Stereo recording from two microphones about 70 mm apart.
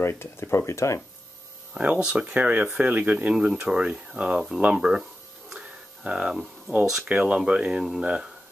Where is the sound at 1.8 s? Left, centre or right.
Centre.